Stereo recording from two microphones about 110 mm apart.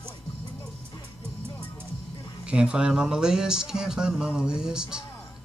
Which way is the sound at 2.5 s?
10° right (ahead or behind).